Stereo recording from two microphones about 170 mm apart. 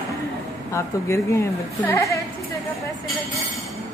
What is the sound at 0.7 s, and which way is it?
A woman's voice, 15° left (ahead or behind).